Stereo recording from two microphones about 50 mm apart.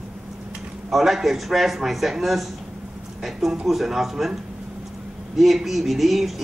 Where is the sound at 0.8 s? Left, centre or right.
Centre.